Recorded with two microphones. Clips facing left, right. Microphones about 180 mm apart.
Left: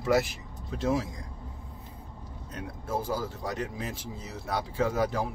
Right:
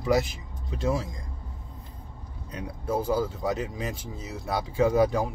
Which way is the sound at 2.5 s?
Centre (ahead or behind).